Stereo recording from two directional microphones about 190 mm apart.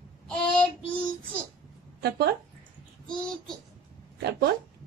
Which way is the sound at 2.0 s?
60° right (ahead or behind).